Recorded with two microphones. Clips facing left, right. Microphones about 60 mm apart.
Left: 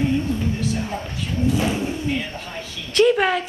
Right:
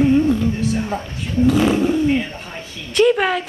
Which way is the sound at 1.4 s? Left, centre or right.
Right.